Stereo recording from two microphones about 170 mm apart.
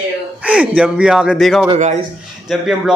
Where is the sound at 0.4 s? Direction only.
5° right (ahead or behind).